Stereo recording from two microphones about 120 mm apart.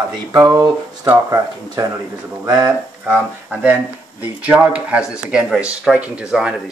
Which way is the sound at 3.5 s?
10° right (ahead or behind).